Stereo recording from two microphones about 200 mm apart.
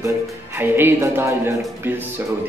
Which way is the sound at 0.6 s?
10° right (ahead or behind).